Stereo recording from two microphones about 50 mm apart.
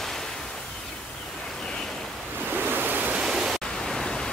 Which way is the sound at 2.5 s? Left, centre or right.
Right.